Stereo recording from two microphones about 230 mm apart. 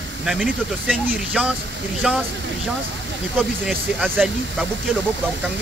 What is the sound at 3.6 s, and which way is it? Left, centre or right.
Speech, centre.